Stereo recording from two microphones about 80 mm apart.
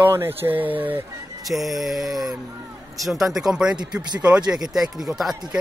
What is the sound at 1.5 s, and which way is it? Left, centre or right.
Speech, centre.